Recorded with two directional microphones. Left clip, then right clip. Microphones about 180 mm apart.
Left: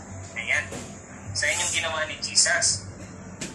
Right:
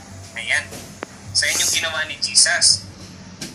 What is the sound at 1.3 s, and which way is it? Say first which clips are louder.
Speech: right 6 dB; 15° right (ahead or behind).